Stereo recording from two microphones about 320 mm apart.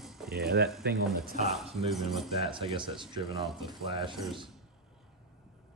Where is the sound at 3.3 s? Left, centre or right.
Centre.